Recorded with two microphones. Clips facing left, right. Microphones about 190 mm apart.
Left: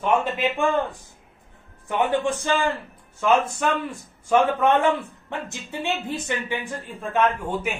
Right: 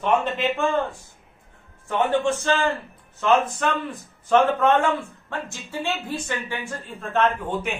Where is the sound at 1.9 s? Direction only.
15° left (ahead or behind).